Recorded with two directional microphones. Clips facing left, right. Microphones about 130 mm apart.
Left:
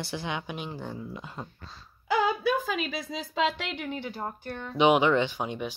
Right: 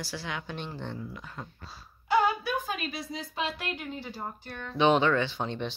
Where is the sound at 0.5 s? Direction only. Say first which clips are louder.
Left 1 dB; 10° left (ahead or behind).